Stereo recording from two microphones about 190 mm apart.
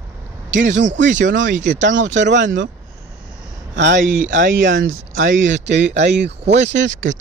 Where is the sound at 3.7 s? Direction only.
70° right (ahead or behind).